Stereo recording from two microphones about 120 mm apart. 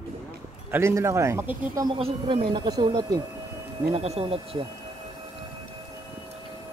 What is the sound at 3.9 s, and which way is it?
Speech, 55° right (ahead or behind).